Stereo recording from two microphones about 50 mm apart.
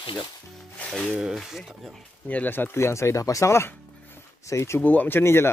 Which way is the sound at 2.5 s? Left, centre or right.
Left.